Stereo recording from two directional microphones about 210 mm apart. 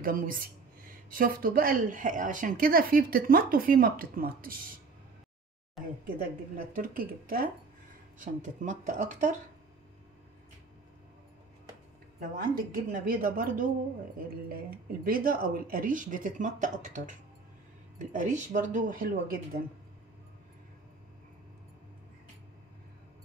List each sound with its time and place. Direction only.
0.0 s speech: 40° right (ahead or behind)
6.0 s speech: 45° right (ahead or behind)
12.2 s speech: 40° right (ahead or behind)